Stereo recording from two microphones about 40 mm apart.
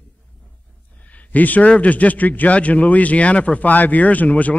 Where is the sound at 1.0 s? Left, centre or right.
Left.